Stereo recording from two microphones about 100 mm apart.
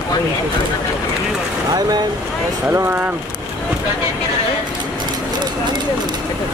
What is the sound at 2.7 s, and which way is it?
Speech, 25° right (ahead or behind).